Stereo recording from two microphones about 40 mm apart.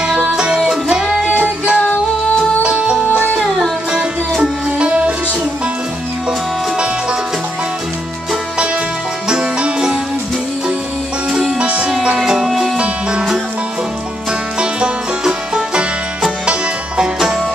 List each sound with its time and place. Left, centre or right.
0.7 s music: centre
1.3 s music: right
3.3 s music: centre
4.4 s music: right
9.3 s music: right
11.6 s music: right
12.4 s music: centre
14.6 s music: centre